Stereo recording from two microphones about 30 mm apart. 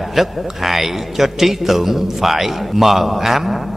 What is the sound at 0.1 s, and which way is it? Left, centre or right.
A man's voice, centre.